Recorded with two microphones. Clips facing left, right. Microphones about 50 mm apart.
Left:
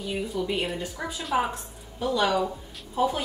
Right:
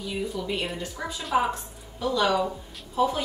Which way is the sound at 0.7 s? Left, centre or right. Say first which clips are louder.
Left 1 dB; centre.